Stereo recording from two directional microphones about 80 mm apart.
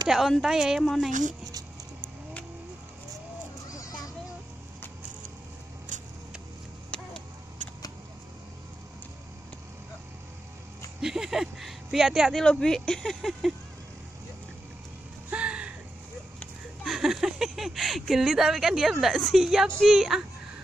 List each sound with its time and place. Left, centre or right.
0.1 s speech: centre
3.7 s children playing: left
6.9 s a sound: centre
11.0 s a sound: centre
12.4 s speech: centre
15.2 s music: centre
16.8 s speech: centre